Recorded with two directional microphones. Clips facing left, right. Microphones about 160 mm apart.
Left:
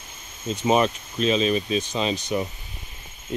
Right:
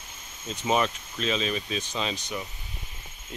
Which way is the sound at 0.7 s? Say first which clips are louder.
Left 5 dB; 25° left (ahead or behind).